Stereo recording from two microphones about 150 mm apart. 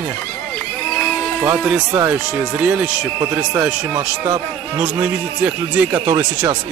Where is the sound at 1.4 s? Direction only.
15° right (ahead or behind).